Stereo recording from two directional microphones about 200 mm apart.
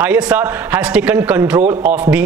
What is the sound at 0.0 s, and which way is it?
A man's voice, 5° right (ahead or behind).